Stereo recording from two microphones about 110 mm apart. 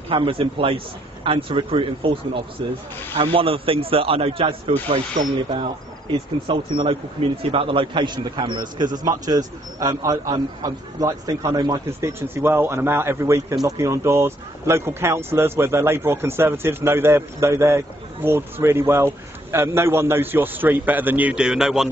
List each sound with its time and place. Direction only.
0.1 s speech: 55° right (ahead or behind)
3.2 s speech: 55° right (ahead or behind); by 11.8 s 40° right (ahead or behind)
12.0 s speech: 25° right (ahead or behind); by 21.8 s 5° right (ahead or behind)